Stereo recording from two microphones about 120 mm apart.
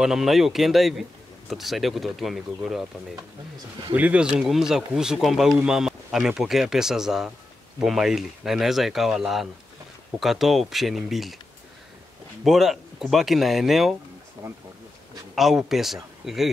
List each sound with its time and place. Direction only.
0.0 s speech: 5° right (ahead or behind)
3.9 s speech: 10° right (ahead or behind)
12.4 s speech: 5° right (ahead or behind)
14.4 s speech: 25° right (ahead or behind)
15.3 s speech: centre (ahead or behind)